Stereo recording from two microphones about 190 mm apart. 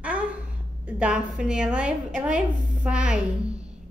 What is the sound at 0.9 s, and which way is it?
A woman's voice, 5° right (ahead or behind).